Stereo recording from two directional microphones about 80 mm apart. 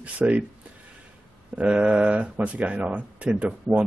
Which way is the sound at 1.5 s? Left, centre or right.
Centre.